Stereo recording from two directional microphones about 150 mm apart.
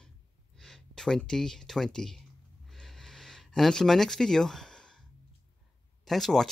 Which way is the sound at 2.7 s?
Centre (ahead or behind).